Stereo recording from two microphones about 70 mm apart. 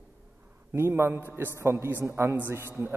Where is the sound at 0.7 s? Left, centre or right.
Right.